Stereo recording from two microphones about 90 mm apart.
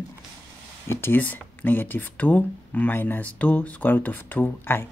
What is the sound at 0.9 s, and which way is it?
Speech, 25° left (ahead or behind).